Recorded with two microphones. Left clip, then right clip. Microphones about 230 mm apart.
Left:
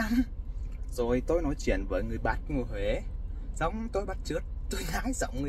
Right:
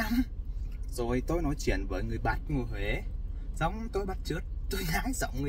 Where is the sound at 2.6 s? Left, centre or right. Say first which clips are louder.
Left 3 dB; centre.